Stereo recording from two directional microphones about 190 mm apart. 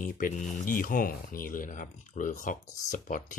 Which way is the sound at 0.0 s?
45° left (ahead or behind).